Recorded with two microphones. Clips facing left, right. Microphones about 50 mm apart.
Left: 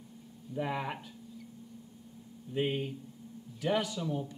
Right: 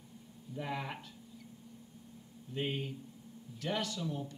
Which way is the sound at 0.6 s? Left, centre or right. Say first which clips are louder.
Left 5 dB; centre.